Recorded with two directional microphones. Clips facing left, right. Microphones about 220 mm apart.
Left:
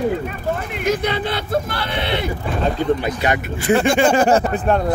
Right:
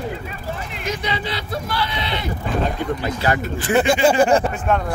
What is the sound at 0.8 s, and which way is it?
Speech, 55° left (ahead or behind).